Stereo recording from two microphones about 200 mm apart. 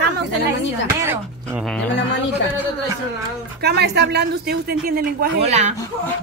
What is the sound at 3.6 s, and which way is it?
Speech, 55° right (ahead or behind).